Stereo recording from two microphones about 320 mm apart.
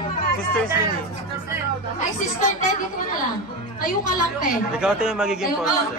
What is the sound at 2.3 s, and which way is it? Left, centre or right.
Speech, left.